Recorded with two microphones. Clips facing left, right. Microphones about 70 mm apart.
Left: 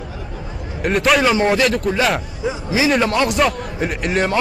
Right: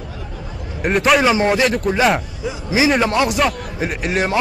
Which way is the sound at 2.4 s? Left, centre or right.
Left.